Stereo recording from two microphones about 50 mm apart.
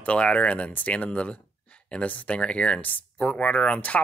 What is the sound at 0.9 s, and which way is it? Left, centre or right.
Speech, left.